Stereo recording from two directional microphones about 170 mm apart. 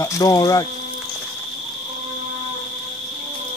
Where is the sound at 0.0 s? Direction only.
20° left (ahead or behind).